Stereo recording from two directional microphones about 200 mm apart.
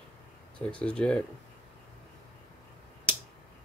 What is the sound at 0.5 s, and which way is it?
Speech, 5° left (ahead or behind).